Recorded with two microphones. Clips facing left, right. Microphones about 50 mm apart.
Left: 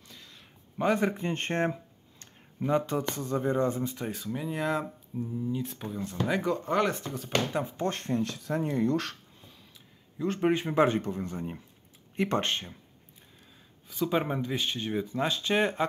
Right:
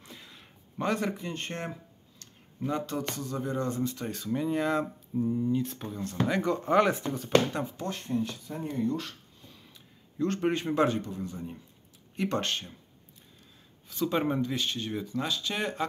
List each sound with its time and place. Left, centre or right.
0.0 s a sound: centre
0.7 s speech: centre
1.1 s a man's voice: left
2.6 s speech: left
4.0 s speech: centre
7.9 s speech: left
10.1 s speech: centre
10.9 s a man's voice: left
12.2 s speech: left
13.8 s speech: centre; by 15.9 s left